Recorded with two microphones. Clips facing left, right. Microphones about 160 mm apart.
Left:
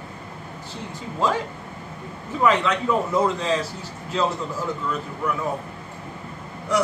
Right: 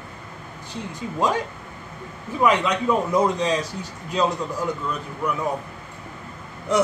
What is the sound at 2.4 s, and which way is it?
Speech, 15° right (ahead or behind).